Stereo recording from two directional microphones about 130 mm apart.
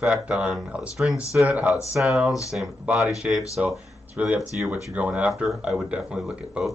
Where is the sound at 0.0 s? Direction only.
5° right (ahead or behind).